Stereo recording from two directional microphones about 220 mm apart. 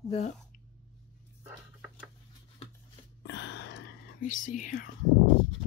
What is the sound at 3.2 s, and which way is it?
Whispering, 50° left (ahead or behind).